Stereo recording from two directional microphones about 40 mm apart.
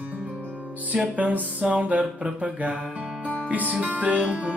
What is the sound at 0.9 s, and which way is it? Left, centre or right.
Music, right.